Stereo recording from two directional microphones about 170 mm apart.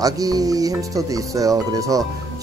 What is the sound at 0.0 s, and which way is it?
Speech, 20° right (ahead or behind).